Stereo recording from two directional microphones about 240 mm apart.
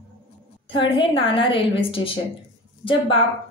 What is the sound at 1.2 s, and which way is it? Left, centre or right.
Speech, left.